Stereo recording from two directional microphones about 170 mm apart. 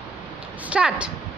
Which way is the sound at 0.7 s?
5° right (ahead or behind).